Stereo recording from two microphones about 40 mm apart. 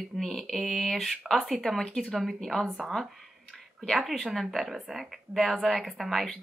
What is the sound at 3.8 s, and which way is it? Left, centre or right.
A woman's voice, centre.